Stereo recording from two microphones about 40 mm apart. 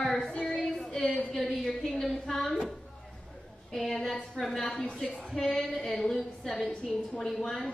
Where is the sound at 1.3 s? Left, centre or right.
Centre.